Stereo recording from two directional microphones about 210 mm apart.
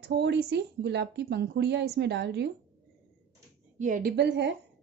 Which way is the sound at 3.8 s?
40° right (ahead or behind).